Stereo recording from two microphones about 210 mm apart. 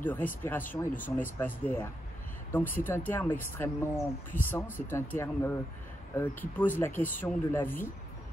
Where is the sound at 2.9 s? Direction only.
10° left (ahead or behind).